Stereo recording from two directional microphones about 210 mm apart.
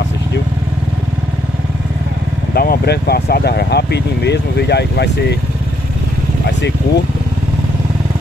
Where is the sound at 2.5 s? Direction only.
45° left (ahead or behind).